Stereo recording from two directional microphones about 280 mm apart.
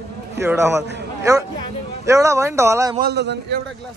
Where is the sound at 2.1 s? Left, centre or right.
Centre.